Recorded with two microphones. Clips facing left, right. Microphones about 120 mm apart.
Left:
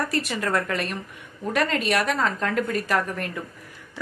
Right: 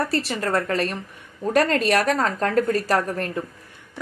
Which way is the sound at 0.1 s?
30° right (ahead or behind).